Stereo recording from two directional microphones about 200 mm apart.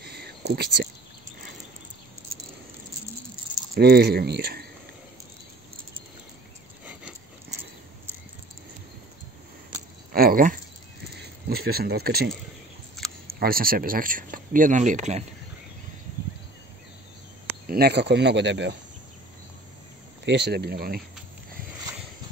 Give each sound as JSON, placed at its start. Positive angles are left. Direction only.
{"t": 0.0, "sound": "a sound", "side_deg": -55}
{"t": 0.5, "sound": "speech", "side_deg": -50}
{"t": 3.7, "sound": "speech", "side_deg": -50}
{"t": 6.8, "sound": "a sound", "side_deg": -5}
{"t": 10.1, "sound": "speech", "side_deg": -45}
{"t": 13.0, "sound": "a sound", "side_deg": 0}
{"t": 13.4, "sound": "speech", "side_deg": -45}
{"t": 17.6, "sound": "speech", "side_deg": -50}
{"t": 20.2, "sound": "speech", "side_deg": -55}